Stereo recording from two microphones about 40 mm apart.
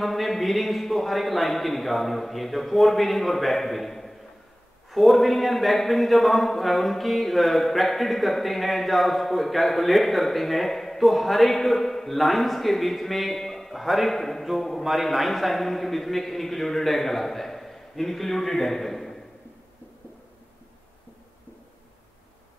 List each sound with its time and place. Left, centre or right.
0.0 s a man's voice: centre